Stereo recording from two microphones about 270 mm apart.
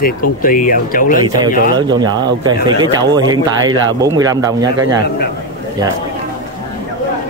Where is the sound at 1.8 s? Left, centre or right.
Centre.